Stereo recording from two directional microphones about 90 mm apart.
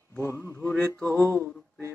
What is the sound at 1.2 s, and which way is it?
Speech, 30° right (ahead or behind).